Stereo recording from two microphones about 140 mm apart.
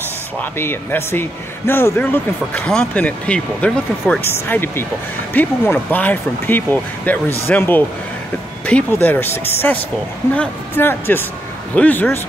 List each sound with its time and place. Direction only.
0.4 s speech: 15° left (ahead or behind)